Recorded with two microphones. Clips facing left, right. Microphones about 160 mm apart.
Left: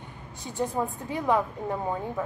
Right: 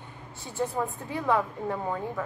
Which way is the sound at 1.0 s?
15° left (ahead or behind).